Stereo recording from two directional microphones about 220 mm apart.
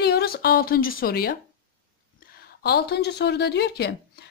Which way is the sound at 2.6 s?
50° left (ahead or behind).